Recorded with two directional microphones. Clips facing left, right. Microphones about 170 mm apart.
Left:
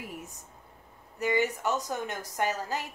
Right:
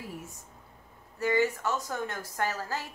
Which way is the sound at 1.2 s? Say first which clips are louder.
Right 1 dB; 20° left (ahead or behind).